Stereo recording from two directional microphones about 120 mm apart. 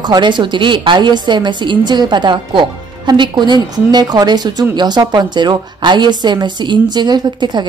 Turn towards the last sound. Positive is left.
turn(degrees=-35)  # may be behind; listen again after turning